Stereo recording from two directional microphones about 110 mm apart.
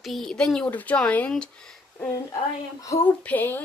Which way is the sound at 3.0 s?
15° left (ahead or behind).